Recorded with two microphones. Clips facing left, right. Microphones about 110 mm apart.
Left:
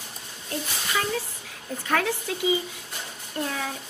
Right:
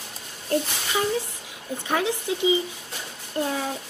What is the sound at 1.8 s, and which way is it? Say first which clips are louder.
Speech: right 1 dB; 20° right (ahead or behind).